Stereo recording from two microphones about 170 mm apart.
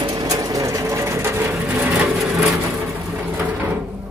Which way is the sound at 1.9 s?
Centre (ahead or behind).